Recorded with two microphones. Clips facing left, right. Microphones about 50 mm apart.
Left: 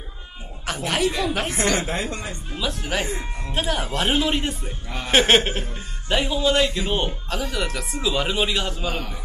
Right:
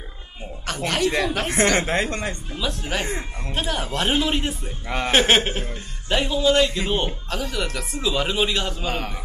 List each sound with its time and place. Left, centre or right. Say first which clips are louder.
0.7 s a man's voice: even; centre
1.8 s speech: right 4 dB; right
2.5 s a man's voice: left 3 dB; centre
3.1 s speech: right 1 dB; right
3.5 s a man's voice: left 1 dB; centre
4.8 s speech: right 8 dB; right
5.1 s a man's voice: left 1 dB; centre
8.8 s speech: right 1 dB; right